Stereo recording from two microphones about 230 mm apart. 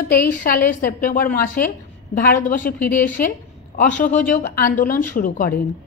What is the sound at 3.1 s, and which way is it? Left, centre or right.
A woman's voice, left.